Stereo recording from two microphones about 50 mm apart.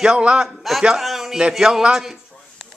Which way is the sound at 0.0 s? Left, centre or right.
Centre.